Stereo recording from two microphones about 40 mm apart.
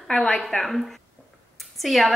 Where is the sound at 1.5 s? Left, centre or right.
Centre.